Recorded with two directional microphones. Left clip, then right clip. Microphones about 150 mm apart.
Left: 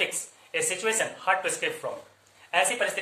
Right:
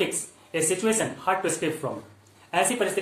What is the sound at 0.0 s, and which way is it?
Speech, 15° right (ahead or behind).